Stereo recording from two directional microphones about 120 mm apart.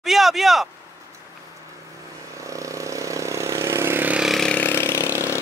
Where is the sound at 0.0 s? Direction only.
Centre (ahead or behind).